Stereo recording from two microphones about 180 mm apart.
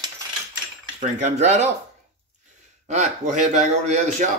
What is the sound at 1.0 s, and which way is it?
Speech, 40° right (ahead or behind).